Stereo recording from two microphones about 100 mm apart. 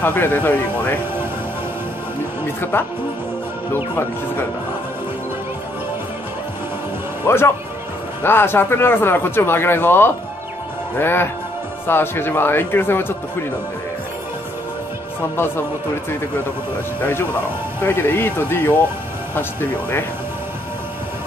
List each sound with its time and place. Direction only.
0.0 s speech: 20° left (ahead or behind)
2.4 s speech: 20° left (ahead or behind)
7.2 s speech: 25° left (ahead or behind)
15.3 s speech: 25° left (ahead or behind)
17.0 s speech: 25° left (ahead or behind)